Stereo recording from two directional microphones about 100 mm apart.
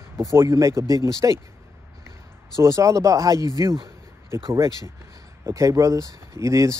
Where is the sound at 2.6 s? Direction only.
30° right (ahead or behind).